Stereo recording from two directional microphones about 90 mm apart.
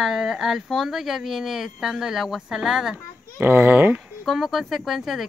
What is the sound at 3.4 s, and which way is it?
Speech, 25° right (ahead or behind).